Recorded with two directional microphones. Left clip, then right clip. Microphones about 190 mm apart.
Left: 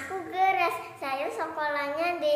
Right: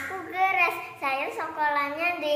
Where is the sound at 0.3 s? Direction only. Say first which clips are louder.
Right 1 dB; 20° left (ahead or behind).